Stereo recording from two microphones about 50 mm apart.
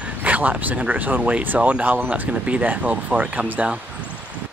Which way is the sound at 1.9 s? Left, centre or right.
Right.